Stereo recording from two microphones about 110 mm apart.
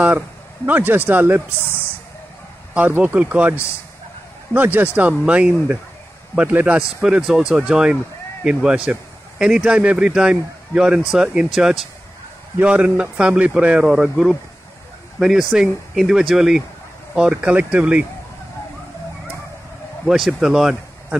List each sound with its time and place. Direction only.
0.7 s speech: 15° right (ahead or behind)
2.9 s speech: 15° right (ahead or behind)
4.6 s speech: 15° right (ahead or behind)
7.0 s speech: 5° right (ahead or behind)
20.1 s speech: 5° right (ahead or behind)